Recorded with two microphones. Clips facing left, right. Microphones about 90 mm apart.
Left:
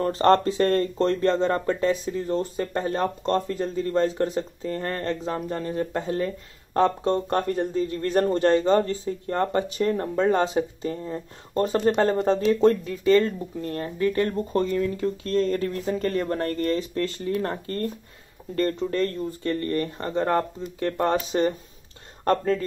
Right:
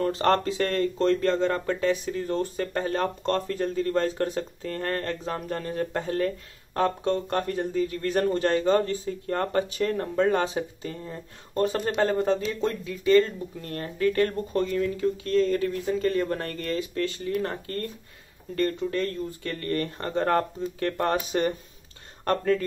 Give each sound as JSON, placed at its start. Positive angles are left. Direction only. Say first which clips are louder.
{"t": 0.0, "sound": "speech", "louder": "left 4 dB", "side_deg": 35}
{"t": 12.5, "sound": "speech", "louder": "left 9 dB", "side_deg": 40}
{"t": 13.7, "sound": "speech", "louder": "left 1 dB", "side_deg": 20}
{"t": 14.5, "sound": "speech", "louder": "left 2 dB", "side_deg": 30}
{"t": 19.5, "sound": "speech", "louder": "left 2 dB", "side_deg": 20}